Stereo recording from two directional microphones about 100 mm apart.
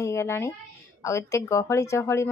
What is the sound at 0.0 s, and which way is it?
A woman's voice, 30° left (ahead or behind).